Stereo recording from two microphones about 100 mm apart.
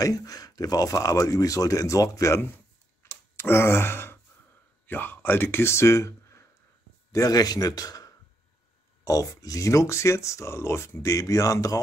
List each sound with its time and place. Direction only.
0.0 s speech: 35° left (ahead or behind)
3.0 s a sound: 25° left (ahead or behind)
3.3 s gasp: 25° left (ahead or behind)
4.8 s a man's voice: 20° left (ahead or behind); by 11.8 s 35° left (ahead or behind)